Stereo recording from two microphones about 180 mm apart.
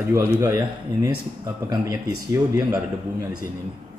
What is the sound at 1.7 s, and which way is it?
A man's voice, 20° right (ahead or behind).